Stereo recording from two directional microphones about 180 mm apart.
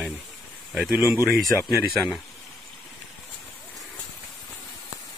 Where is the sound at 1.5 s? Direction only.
15° left (ahead or behind).